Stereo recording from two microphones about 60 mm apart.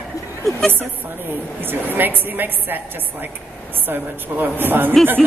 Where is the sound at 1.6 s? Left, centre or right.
Right.